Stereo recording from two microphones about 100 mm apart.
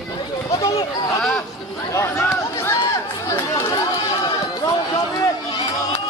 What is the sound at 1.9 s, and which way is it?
Speech, 25° left (ahead or behind).